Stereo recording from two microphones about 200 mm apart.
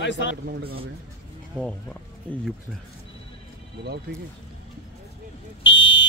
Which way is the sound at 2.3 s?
5° left (ahead or behind).